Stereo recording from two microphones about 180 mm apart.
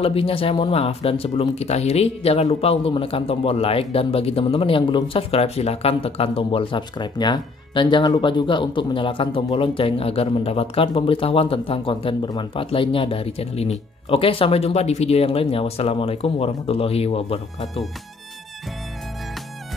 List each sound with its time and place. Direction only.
0.0 s speech: 30° left (ahead or behind)